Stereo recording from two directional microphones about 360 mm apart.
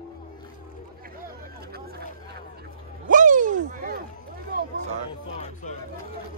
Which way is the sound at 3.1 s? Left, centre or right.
Right.